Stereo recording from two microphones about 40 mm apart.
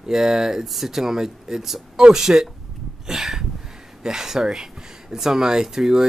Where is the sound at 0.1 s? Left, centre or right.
Centre.